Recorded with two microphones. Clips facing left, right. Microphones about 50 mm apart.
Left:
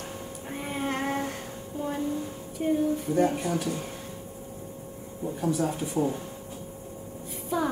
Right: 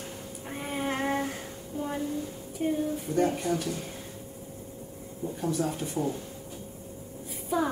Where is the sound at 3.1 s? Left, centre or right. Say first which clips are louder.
Right 1 dB; centre.